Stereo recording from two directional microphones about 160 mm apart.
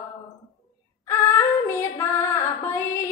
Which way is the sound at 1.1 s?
15° left (ahead or behind).